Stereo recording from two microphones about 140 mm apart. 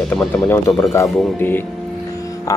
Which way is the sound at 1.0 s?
15° left (ahead or behind).